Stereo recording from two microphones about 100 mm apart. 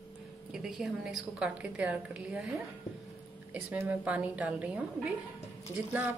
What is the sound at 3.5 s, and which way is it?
A woman's voice, 15° right (ahead or behind).